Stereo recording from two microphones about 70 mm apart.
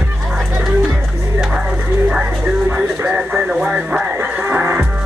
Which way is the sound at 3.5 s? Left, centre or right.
Centre.